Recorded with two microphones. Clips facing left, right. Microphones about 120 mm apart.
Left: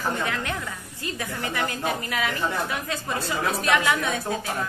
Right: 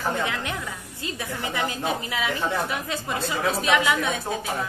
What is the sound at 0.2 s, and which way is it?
A woman's voice, 20° right (ahead or behind).